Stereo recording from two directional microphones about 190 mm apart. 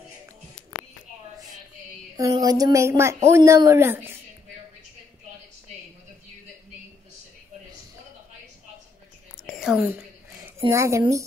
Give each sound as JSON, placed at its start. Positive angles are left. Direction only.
{"t": 2.1, "sound": "speech", "side_deg": -20}
{"t": 9.4, "sound": "whispering", "side_deg": 0}
{"t": 10.7, "sound": "speech", "side_deg": -15}